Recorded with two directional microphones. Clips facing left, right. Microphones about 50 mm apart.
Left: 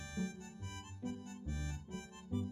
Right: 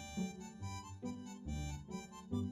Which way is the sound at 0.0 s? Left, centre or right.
Left.